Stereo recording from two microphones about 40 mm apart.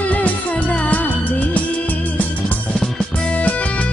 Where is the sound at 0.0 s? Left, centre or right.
Left.